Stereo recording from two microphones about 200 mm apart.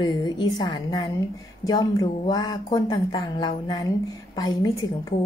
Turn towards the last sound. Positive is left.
turn(degrees=20)  # may be behind; listen again after turning